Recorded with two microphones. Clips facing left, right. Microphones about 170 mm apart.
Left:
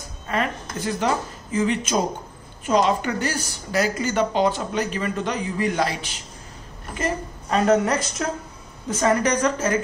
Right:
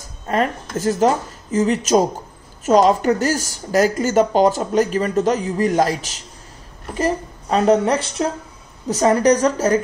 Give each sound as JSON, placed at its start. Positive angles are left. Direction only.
{"t": 0.3, "sound": "a woman's voice", "side_deg": -40}
{"t": 7.0, "sound": "a woman's voice", "side_deg": -30}